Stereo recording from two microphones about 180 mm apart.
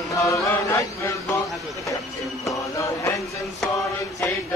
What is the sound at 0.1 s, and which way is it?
Mantra, 20° left (ahead or behind).